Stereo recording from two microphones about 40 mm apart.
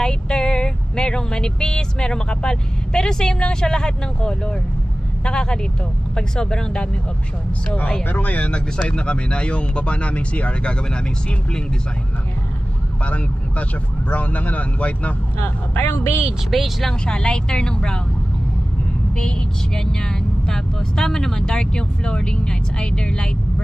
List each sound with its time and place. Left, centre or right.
0.0 s speech: centre
8.0 s speech: left
8.5 s speech: left
13.0 s speech: left
15.4 s speech: left
16.4 s speech: centre
17.0 s speech: left
19.1 s speech: centre